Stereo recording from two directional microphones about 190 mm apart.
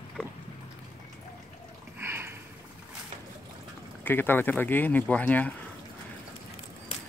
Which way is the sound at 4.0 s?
10° left (ahead or behind).